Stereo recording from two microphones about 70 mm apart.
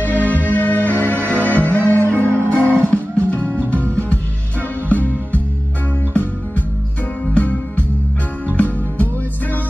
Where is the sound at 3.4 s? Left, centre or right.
Right.